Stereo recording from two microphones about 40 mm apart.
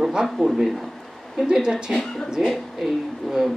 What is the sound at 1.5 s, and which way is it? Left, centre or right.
Speech, centre.